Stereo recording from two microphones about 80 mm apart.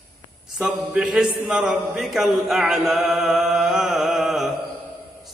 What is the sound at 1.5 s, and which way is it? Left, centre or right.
Chant, centre.